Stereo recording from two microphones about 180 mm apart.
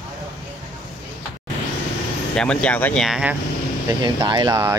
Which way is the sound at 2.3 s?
5° left (ahead or behind).